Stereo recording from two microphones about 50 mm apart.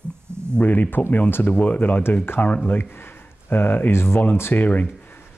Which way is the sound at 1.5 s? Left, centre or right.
Left.